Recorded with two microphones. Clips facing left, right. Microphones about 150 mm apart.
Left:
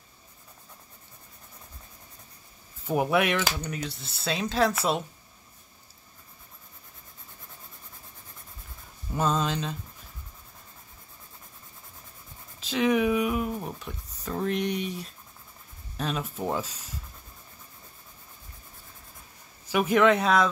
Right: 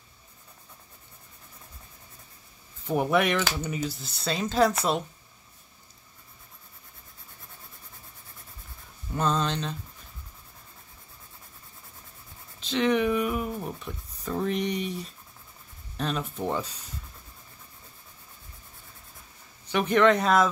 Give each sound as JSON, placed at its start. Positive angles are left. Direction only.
{"t": 2.9, "sound": "speech", "side_deg": 5}
{"t": 9.1, "sound": "speech", "side_deg": 5}
{"t": 12.5, "sound": "speech", "side_deg": 5}
{"t": 19.7, "sound": "speech", "side_deg": 5}